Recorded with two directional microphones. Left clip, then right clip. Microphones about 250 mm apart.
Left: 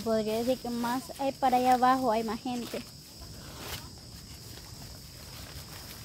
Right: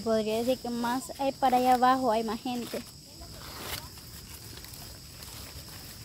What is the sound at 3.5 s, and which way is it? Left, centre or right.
Zipper, centre.